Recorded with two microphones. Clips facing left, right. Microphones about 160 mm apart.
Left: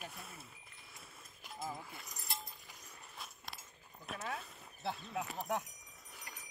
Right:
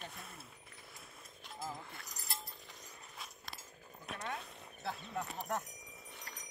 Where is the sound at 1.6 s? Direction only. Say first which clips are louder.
Left 1 dB; centre (ahead or behind).